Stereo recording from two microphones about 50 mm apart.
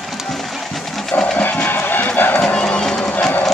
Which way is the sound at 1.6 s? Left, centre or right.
Left.